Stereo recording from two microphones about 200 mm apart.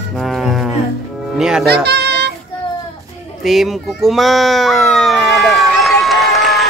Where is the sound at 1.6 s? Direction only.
55° right (ahead or behind).